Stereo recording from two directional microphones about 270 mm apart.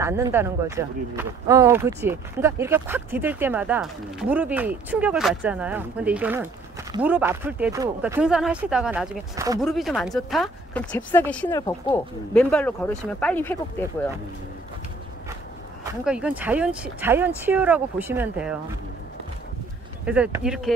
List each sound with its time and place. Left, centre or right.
0.0 s speech: centre
9.6 s speech: centre
15.8 s speech: centre
20.1 s speech: centre